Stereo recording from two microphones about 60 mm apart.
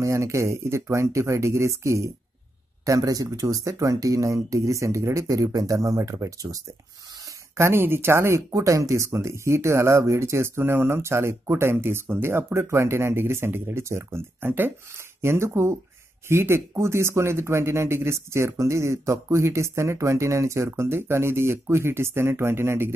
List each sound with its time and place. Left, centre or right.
0.0 s speech: right
2.8 s speech: right
7.5 s speech: right
8.5 s speech: right
14.4 s speech: right
15.2 s speech: right